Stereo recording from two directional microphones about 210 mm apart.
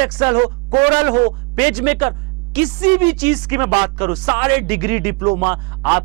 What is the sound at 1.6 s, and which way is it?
A woman's voice, 10° right (ahead or behind).